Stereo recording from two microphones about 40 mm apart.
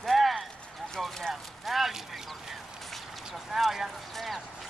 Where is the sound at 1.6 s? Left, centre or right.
Centre.